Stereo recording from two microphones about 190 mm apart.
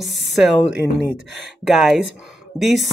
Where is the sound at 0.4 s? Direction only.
Centre (ahead or behind).